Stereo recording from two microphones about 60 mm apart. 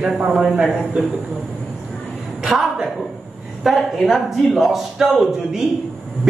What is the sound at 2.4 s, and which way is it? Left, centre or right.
A woman's voice, centre.